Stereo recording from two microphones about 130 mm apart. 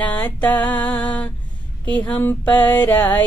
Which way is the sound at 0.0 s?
10° left (ahead or behind).